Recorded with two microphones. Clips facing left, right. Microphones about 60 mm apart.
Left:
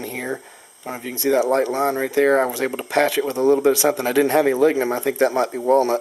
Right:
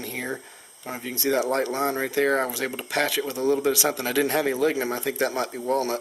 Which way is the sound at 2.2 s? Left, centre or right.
Left.